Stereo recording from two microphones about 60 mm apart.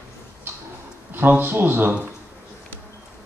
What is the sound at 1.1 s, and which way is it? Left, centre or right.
Speech, right.